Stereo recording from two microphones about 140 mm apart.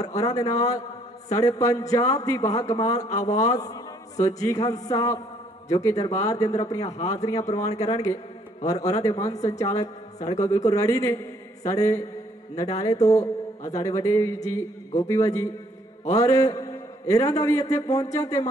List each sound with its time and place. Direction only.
0.2 s a man's voice: 25° left (ahead or behind)